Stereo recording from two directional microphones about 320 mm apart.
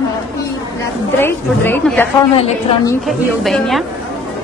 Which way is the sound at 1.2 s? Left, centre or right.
Centre.